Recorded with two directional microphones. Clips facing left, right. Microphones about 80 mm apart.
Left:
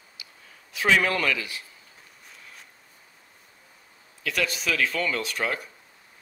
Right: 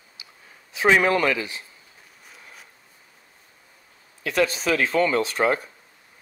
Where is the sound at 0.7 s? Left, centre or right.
Right.